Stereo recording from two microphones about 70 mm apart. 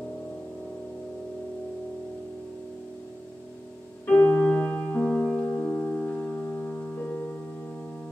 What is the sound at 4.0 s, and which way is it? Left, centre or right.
Music, left.